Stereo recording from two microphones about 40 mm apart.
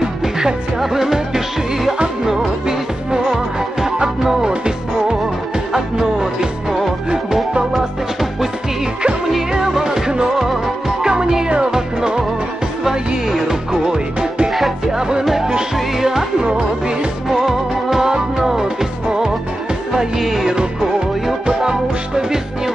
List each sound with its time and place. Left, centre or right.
0.0 s music: centre
7.7 s music: centre
9.5 s music: centre
13.3 s music: centre
14.5 s music: centre
15.0 s music: centre
17.3 s music: centre
21.5 s music: centre